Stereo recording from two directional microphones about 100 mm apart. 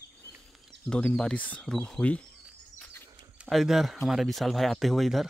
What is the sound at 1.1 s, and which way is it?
Speech, 10° left (ahead or behind).